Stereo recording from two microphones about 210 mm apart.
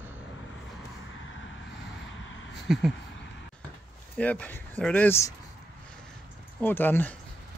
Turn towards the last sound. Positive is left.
turn(degrees=10)  # may be behind; listen again after turning